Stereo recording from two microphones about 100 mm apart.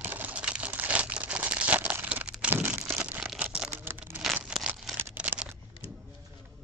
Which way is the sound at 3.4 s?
10° right (ahead or behind).